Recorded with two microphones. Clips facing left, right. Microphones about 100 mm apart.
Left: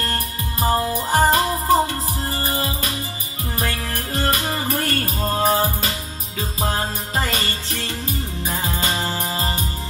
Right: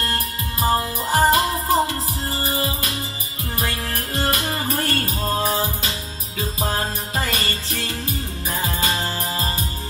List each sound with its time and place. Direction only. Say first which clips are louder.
0.0 s music: even; 30° left (ahead or behind)
4.3 s music: left 2 dB; 35° left (ahead or behind)
4.6 s music: left 1 dB; 30° right (ahead or behind)
5.2 s music: left 4 dB; 35° left (ahead or behind)
7.2 s jingle bell: left 2 dB; 35° left (ahead or behind)
8.5 s music: right 1 dB; 35° left (ahead or behind)